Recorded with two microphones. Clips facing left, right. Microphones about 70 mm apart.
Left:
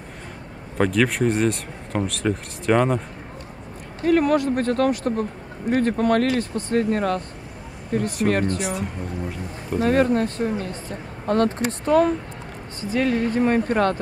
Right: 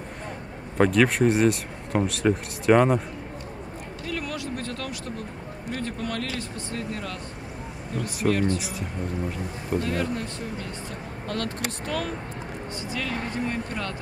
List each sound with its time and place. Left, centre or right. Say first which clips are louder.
0.7 s speech: even; centre
4.0 s speech: left 15 dB; left
8.5 s speech: left 6 dB; centre
9.8 s speech: left 9 dB; left